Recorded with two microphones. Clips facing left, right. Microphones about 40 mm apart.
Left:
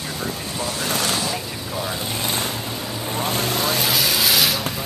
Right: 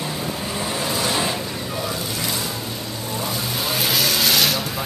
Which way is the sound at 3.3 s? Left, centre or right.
Left.